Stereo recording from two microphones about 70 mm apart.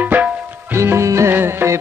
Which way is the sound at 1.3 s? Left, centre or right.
Right.